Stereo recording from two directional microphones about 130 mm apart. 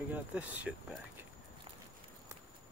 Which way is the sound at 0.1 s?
10° right (ahead or behind).